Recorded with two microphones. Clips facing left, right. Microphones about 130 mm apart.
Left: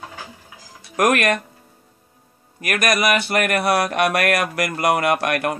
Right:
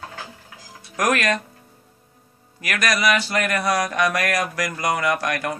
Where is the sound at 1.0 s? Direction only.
55° left (ahead or behind).